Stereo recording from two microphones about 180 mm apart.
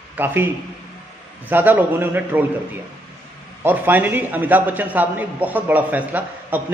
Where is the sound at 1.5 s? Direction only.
10° right (ahead or behind).